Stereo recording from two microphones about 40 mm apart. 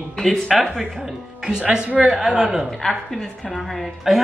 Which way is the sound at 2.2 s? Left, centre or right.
Centre.